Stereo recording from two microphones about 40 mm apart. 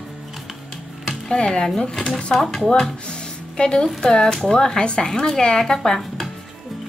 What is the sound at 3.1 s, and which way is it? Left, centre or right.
Music, left.